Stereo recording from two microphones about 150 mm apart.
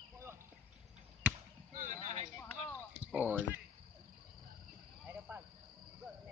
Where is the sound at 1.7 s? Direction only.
60° right (ahead or behind).